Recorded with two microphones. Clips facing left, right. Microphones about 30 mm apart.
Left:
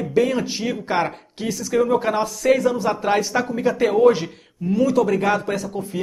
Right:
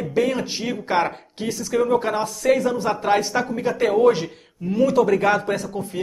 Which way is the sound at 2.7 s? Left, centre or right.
Centre.